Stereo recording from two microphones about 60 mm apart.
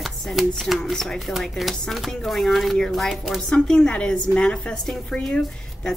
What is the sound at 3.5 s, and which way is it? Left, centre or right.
A woman's voice, centre.